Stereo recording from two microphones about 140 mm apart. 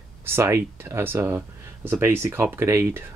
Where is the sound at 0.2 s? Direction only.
20° right (ahead or behind).